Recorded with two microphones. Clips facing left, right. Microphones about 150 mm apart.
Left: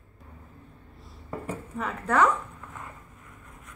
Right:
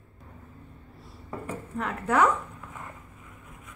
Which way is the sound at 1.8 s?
5° right (ahead or behind).